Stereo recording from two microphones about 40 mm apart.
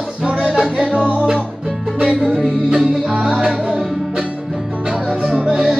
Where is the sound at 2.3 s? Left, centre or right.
Right.